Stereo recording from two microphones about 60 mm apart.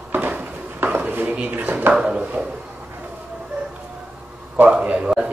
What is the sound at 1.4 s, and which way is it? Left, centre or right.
Speech, right.